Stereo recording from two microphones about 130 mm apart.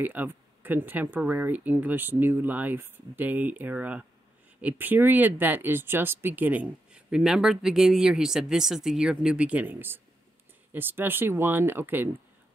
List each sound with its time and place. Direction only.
0.0 s speech: 15° right (ahead or behind)